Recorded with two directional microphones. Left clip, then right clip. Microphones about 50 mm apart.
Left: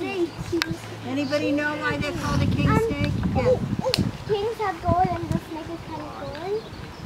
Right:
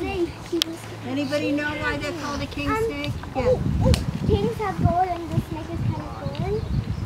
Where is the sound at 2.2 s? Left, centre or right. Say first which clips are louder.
Left 2 dB; left.